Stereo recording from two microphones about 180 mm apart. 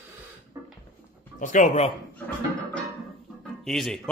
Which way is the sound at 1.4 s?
45° left (ahead or behind).